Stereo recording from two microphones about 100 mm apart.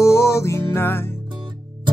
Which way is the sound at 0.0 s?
30° left (ahead or behind).